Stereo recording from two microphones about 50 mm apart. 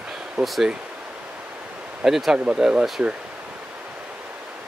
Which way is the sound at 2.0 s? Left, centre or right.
Centre.